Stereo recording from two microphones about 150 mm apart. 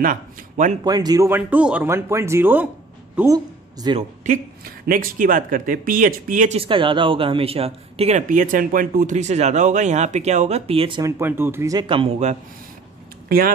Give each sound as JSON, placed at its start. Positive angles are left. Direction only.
{"t": 0.0, "sound": "speech", "side_deg": -60}
{"t": 0.8, "sound": "speech", "side_deg": -25}
{"t": 3.8, "sound": "speech", "side_deg": -30}
{"t": 4.2, "sound": "speech", "side_deg": -70}
{"t": 6.5, "sound": "speech", "side_deg": -35}
{"t": 11.0, "sound": "speech", "side_deg": -20}
{"t": 11.9, "sound": "a man's voice", "side_deg": -40}